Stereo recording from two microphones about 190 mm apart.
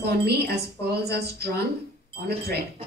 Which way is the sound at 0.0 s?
60° right (ahead or behind).